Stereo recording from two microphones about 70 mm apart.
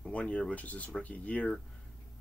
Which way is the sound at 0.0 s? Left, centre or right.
Centre.